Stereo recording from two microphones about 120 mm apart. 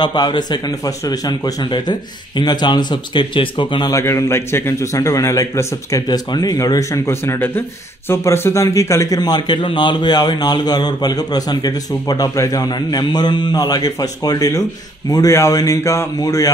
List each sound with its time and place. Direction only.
0.0 s a man's voice: 40° left (ahead or behind)
3.9 s a man's voice: 25° left (ahead or behind)